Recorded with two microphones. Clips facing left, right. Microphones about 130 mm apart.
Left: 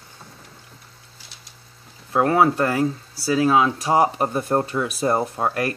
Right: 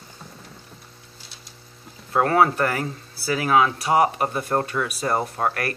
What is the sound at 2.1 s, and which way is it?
Speech, 15° left (ahead or behind).